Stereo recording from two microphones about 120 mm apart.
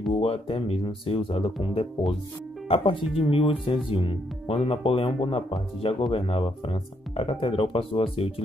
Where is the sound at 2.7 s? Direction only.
45° left (ahead or behind).